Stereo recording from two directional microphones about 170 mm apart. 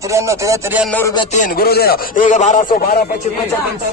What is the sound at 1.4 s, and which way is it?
Speech, 65° left (ahead or behind).